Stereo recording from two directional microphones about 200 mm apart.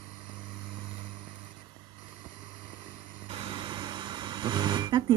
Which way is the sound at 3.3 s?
25° right (ahead or behind).